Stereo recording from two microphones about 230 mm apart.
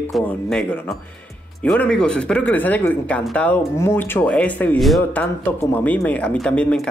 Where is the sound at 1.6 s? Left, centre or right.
Centre.